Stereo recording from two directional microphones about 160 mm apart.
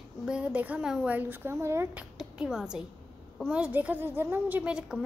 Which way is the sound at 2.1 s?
5° right (ahead or behind).